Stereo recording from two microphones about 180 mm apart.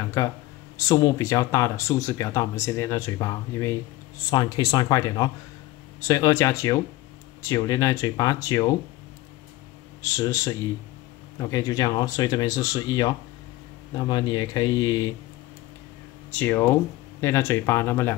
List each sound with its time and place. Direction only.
0.2 s speech: 15° left (ahead or behind)
10.0 s speech: 15° left (ahead or behind)
16.3 s speech: 10° left (ahead or behind)